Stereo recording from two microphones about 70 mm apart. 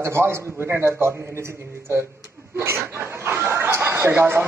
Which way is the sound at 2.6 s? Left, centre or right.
Right.